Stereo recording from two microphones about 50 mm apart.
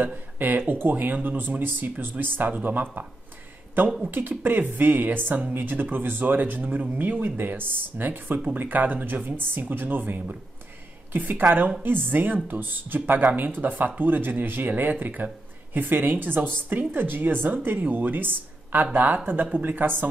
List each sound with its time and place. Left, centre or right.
0.0 s speech: right